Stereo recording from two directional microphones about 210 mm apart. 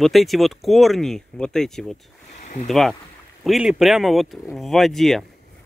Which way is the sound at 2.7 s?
Centre (ahead or behind).